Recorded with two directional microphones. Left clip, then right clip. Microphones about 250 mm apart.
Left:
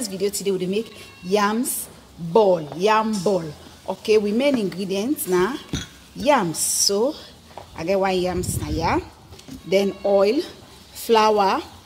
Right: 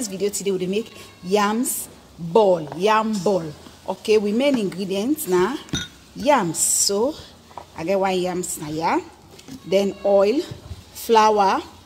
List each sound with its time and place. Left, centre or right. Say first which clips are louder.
0.0 s speech: even; centre